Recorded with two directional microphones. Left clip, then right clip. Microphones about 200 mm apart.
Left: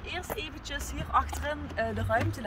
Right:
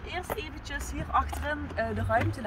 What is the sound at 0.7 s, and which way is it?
A woman's voice, 5° left (ahead or behind).